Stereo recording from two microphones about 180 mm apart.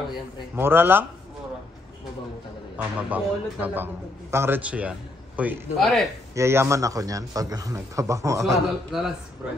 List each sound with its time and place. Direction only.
0.6 s a man's voice: 10° right (ahead or behind)
2.8 s a man's voice: 5° right (ahead or behind)
6.3 s a man's voice: 15° right (ahead or behind)
8.9 s a man's voice: 5° right (ahead or behind)